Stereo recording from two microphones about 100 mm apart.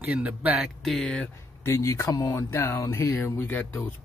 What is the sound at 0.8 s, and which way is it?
Speech, 5° left (ahead or behind).